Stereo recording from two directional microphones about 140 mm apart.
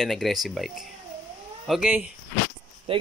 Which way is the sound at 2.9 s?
45° right (ahead or behind).